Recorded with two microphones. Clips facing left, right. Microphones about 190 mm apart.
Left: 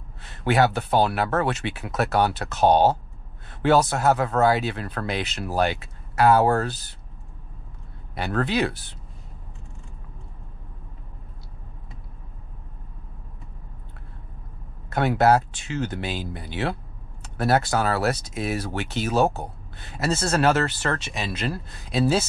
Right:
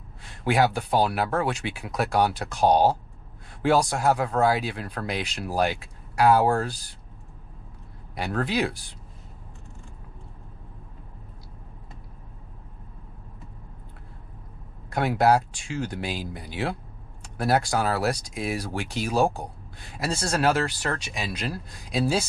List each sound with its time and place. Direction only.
0.2 s speech: centre (ahead or behind)
8.1 s speech: centre (ahead or behind)
14.9 s speech: centre (ahead or behind)